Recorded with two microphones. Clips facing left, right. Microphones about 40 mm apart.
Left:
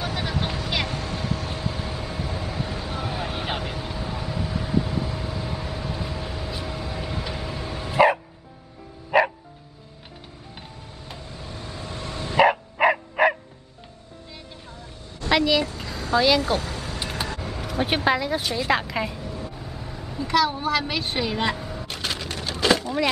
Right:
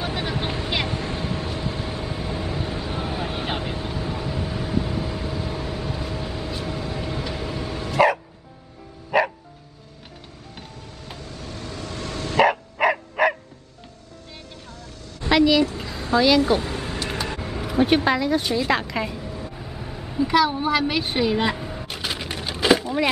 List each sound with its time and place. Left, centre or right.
0.0 s vehicle: centre
1.7 s vehicle: centre
7.9 s bow-wow: centre
9.1 s music: centre
11.2 s dog: centre
15.2 s a sound: centre
16.3 s speech: centre
16.6 s vehicle: right
17.3 s vehicle: centre
17.7 s speech: centre
22.2 s a sound: centre